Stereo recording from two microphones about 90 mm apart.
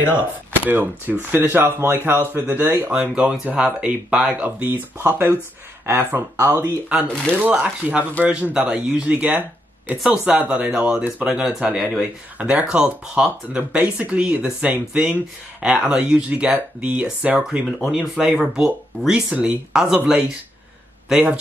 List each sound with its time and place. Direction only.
0.7 s speech: 20° right (ahead or behind)
7.3 s speech: 15° right (ahead or behind)